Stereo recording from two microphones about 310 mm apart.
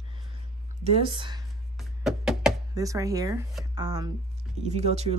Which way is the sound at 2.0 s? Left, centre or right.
Centre.